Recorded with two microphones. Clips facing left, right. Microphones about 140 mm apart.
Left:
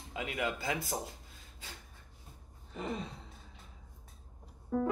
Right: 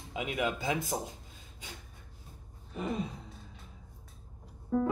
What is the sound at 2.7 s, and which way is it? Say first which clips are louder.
Gasp: right 4 dB; 10° right (ahead or behind).